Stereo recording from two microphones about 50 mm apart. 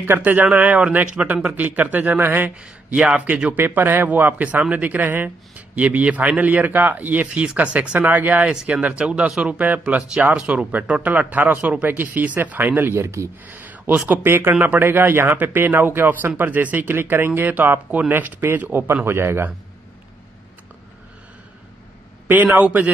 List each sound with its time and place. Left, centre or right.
0.0 s speech: right
1.5 s speech: right
2.6 s speech: centre
3.5 s speech: right
7.2 s speech: centre; by 8.5 s right
8.5 s speech: centre; by 12.9 s right
12.9 s speech: right
13.5 s a sound: right
14.2 s speech: right
18.6 s speech: right
19.0 s a man's voice: right
22.3 s speech: right